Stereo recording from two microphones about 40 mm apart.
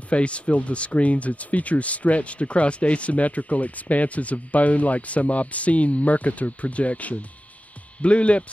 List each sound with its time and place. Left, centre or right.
0.1 s speech: left